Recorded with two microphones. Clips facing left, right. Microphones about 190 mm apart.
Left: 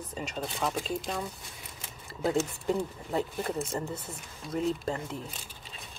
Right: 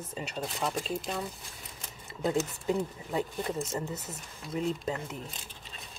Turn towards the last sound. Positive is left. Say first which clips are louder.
# left 2 dB
turn(degrees=-5)  # may be behind; listen again after turning